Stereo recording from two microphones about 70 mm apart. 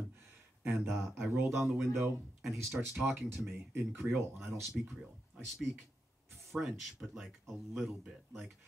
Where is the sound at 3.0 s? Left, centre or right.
Right.